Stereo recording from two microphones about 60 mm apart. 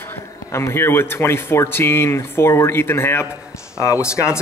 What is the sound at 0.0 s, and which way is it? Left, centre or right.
A man's voice, left.